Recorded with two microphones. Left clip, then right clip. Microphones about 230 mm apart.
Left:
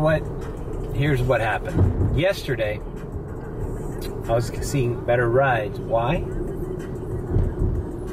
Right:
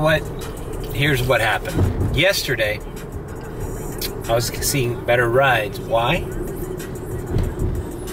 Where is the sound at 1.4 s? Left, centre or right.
Centre.